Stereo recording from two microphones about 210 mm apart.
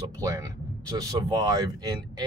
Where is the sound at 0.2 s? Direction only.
15° right (ahead or behind).